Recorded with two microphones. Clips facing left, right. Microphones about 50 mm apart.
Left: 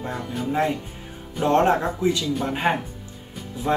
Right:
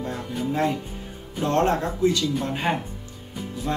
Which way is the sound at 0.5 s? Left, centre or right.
Centre.